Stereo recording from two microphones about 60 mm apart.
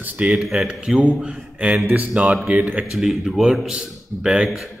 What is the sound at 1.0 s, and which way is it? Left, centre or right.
Speech, right.